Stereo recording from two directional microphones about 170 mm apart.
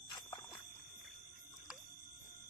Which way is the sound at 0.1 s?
25° left (ahead or behind).